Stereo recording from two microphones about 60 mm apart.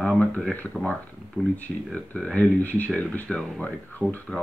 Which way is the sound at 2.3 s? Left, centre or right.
Left.